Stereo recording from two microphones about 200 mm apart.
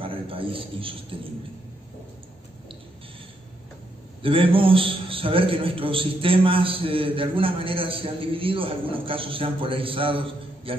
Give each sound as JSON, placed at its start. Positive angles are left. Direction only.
{"t": 0.0, "sound": "a man's voice", "side_deg": -25}
{"t": 4.2, "sound": "a man's voice", "side_deg": -25}